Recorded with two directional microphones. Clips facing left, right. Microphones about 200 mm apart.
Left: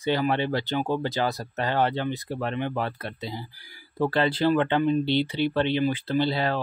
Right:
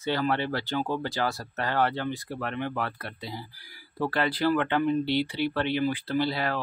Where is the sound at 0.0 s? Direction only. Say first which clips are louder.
Left 3 dB; 15° left (ahead or behind).